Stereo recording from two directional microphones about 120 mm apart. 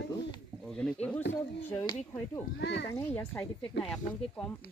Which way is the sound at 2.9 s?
15° left (ahead or behind).